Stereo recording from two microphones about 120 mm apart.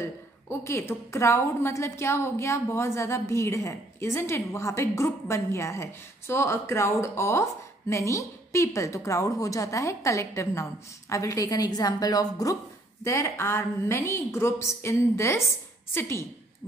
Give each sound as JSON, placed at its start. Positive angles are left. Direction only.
{"t": 0.0, "sound": "a woman's voice", "side_deg": 20}